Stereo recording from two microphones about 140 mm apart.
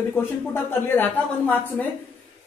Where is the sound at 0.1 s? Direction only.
15° left (ahead or behind).